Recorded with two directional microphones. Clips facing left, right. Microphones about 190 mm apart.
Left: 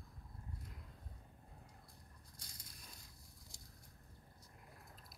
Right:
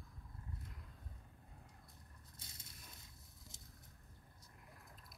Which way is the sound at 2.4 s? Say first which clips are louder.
Even; 25° right (ahead or behind).